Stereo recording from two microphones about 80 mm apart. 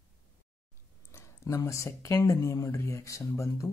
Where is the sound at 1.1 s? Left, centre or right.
Left.